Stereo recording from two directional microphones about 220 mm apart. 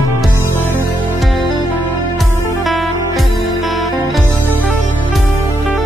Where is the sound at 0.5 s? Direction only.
10° left (ahead or behind).